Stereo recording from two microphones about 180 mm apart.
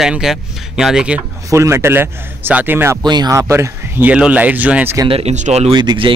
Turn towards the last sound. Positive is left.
turn(degrees=-25)  # may be behind; listen again after turning